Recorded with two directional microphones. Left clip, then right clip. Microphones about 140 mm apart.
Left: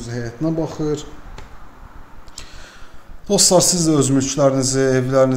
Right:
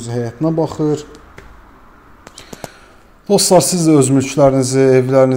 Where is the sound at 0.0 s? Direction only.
25° right (ahead or behind).